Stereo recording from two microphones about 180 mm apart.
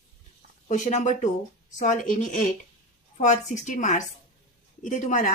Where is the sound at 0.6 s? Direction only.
45° left (ahead or behind).